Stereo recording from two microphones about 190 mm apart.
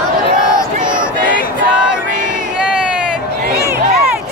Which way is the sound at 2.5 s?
5° right (ahead or behind).